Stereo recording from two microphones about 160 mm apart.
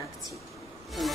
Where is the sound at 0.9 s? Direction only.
Centre (ahead or behind).